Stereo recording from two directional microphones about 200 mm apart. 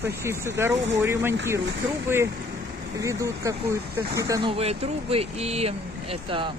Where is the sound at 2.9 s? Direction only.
15° right (ahead or behind).